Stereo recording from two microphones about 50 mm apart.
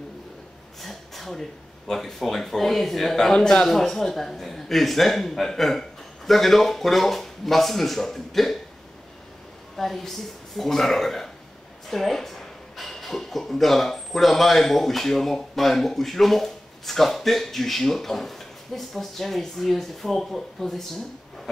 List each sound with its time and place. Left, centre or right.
0.8 s a sound: centre
1.9 s speech: centre
3.3 s speech: centre
3.6 s speech: centre
9.8 s speech: centre